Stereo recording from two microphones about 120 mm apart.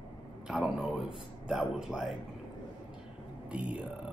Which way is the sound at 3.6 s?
45° left (ahead or behind).